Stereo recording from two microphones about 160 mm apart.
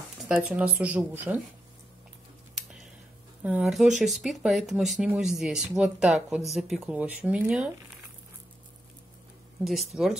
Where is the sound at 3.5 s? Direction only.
5° right (ahead or behind).